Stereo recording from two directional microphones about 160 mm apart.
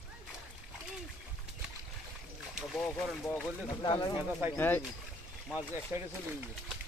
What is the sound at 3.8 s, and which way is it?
Speech, 25° left (ahead or behind).